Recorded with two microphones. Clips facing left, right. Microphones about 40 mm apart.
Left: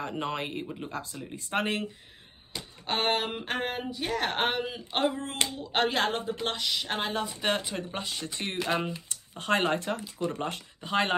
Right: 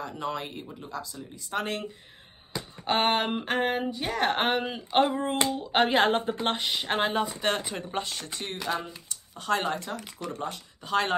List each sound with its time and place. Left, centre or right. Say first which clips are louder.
0.0 s speech: left 1 dB; left
0.7 s speech: left 1 dB; left
2.8 s speech: right 3 dB; centre
6.0 s a woman's voice: right 5 dB; right
6.4 s speech: right 3 dB; right
7.3 s speech: right 1 dB; centre
8.4 s speech: left 2 dB; left
10.8 s speech: right 1 dB; centre